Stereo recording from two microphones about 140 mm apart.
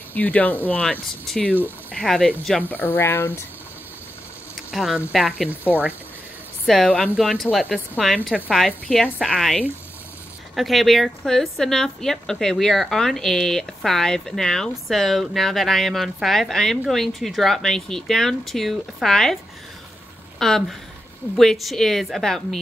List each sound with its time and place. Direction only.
0.1 s speech: 10° left (ahead or behind)
2.7 s speech: 15° left (ahead or behind)
4.6 s a woman's voice: 5° right (ahead or behind)
6.6 s a woman's voice: 5° left (ahead or behind)
20.3 s a woman's voice: 5° left (ahead or behind)